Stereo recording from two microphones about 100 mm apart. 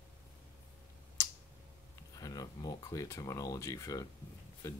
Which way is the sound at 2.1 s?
40° left (ahead or behind).